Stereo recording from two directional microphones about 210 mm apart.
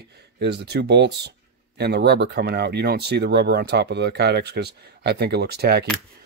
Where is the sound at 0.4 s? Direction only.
55° right (ahead or behind).